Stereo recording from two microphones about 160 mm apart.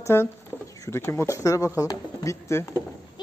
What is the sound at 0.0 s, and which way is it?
Speech, 15° left (ahead or behind).